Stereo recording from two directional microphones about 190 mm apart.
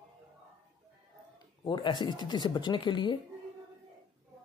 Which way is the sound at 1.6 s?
25° left (ahead or behind).